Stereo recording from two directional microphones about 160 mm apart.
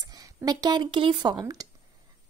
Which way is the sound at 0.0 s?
25° right (ahead or behind).